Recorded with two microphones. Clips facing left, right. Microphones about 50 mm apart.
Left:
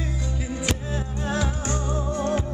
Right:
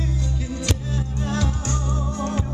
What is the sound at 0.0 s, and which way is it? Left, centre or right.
Music, left.